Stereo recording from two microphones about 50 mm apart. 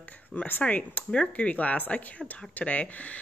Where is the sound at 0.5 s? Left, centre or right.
Left.